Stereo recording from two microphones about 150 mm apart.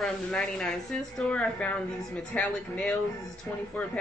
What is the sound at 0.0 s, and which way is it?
A woman's voice, 5° left (ahead or behind).